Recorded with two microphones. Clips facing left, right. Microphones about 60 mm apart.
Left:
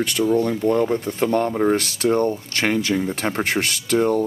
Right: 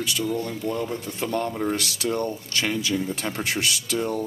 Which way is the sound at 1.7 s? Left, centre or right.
Left.